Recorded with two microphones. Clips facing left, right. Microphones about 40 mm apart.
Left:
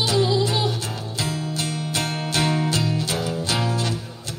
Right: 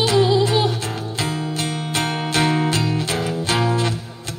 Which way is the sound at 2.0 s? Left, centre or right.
Right.